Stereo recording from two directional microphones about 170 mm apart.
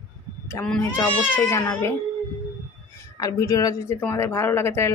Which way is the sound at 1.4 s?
20° left (ahead or behind).